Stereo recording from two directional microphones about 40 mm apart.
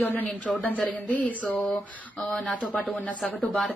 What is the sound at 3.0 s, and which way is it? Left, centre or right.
Speech, left.